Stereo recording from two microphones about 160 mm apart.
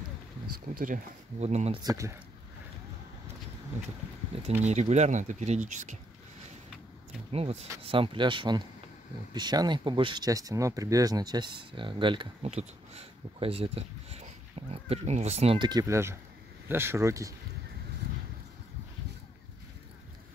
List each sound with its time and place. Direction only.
0.8 s speech: 50° right (ahead or behind)
1.8 s speech: 20° right (ahead or behind)
4.6 s speech: 45° right (ahead or behind)
7.3 s speech: 40° right (ahead or behind); by 17.3 s 20° right (ahead or behind)